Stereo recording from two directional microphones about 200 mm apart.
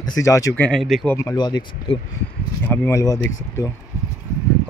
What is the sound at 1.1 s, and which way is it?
A man's voice, 15° left (ahead or behind).